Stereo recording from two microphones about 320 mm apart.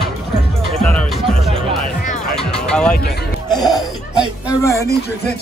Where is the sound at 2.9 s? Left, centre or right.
Left.